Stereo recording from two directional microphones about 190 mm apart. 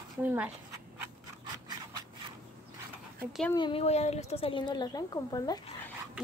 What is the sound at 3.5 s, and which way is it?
Speech, 25° left (ahead or behind).